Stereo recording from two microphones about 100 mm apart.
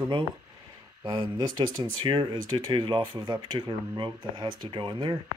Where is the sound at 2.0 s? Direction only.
55° right (ahead or behind).